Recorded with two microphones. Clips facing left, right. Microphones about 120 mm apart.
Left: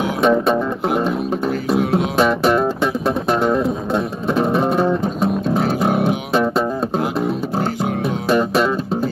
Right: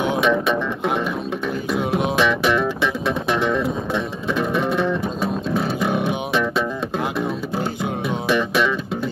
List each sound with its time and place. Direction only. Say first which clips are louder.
0.2 s music: left 4 dB; 40° left (ahead or behind)
1.8 s music: left 3 dB; 20° right (ahead or behind)
2.1 s music: left 4 dB; 40° left (ahead or behind)
6.0 s music: left 4 dB; 35° left (ahead or behind)